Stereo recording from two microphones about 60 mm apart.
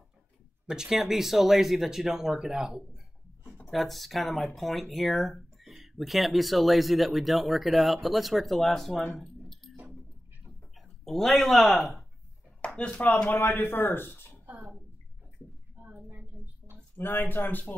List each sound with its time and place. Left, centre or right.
0.7 s speech: centre
3.6 s speech: centre
10.8 s speech: centre
12.6 s speech: centre
13.4 s speech: left
14.4 s bathtub: right
15.9 s a sound: right
16.9 s speech: left